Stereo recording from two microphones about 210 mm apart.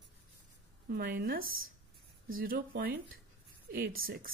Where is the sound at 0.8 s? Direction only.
45° right (ahead or behind).